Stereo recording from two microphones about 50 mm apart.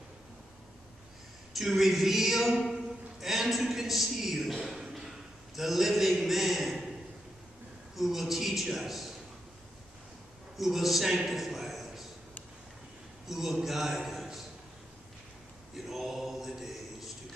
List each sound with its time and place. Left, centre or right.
1.5 s a man's voice: centre
4.6 s a sound: centre
5.6 s a man's voice: centre
7.9 s a man's voice: centre
10.6 s a man's voice: centre
13.3 s a man's voice: centre
15.7 s a sound: centre